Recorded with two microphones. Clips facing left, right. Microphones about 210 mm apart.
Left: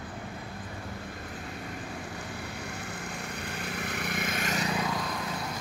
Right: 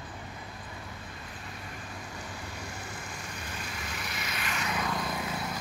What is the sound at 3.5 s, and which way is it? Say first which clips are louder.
Vehicle: left 6 dB; 60° left (ahead or behind).